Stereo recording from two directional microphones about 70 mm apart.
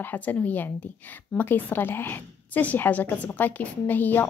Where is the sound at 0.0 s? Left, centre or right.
Left.